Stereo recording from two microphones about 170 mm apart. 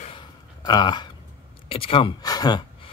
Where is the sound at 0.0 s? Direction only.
30° left (ahead or behind).